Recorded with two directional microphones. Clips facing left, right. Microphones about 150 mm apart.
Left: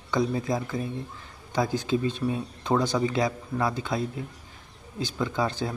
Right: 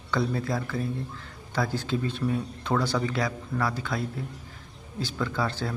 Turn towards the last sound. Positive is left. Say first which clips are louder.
# left 2 dB
turn(degrees=20)  # may be behind; listen again after turning